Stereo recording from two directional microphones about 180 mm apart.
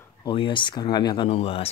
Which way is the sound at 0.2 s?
30° left (ahead or behind).